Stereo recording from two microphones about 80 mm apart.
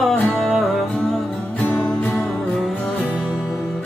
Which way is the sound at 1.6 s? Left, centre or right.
Centre.